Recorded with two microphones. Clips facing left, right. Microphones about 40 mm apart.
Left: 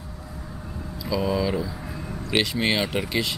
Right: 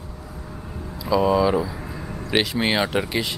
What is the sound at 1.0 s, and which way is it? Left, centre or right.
Speech, centre.